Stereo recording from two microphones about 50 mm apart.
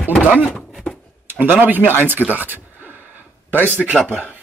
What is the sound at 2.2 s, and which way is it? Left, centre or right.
Door, centre.